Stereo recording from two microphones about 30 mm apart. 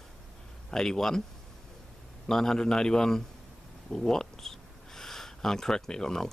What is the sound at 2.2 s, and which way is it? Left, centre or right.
A man's voice, centre.